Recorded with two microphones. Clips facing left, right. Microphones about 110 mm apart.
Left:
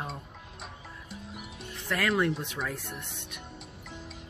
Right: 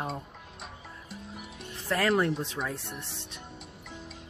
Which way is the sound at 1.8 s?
30° right (ahead or behind).